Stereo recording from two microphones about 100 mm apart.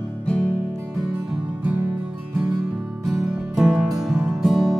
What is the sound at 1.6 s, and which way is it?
Music, 15° right (ahead or behind).